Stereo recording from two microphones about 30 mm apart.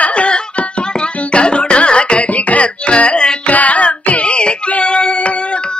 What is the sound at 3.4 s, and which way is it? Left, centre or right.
Music, left.